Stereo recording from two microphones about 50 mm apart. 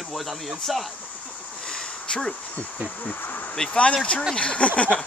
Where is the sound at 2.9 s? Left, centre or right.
Left.